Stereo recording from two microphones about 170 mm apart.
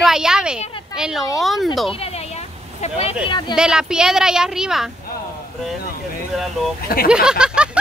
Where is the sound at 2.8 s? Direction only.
40° left (ahead or behind).